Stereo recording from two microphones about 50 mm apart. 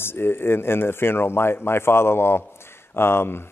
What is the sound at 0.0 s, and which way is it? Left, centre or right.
A man's voice, left.